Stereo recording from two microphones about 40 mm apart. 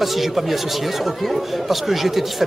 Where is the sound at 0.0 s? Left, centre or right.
Centre.